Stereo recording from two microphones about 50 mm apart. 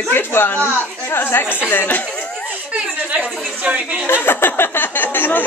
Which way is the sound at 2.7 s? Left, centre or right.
Right.